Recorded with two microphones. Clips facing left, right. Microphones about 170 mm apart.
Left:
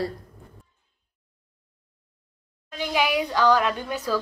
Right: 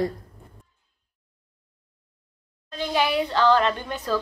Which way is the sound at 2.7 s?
10° left (ahead or behind).